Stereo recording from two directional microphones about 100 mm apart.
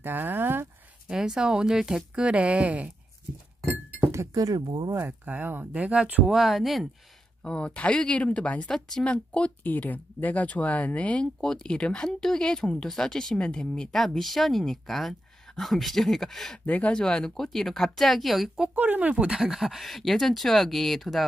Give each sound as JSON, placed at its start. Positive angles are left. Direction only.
{"t": 0.0, "sound": "a sound", "side_deg": -20}
{"t": 1.0, "sound": "speech", "side_deg": -5}
{"t": 3.6, "sound": "speech", "side_deg": -30}
{"t": 4.9, "sound": "speech", "side_deg": -20}
{"t": 7.4, "sound": "speech", "side_deg": 10}
{"t": 18.8, "sound": "speech", "side_deg": -15}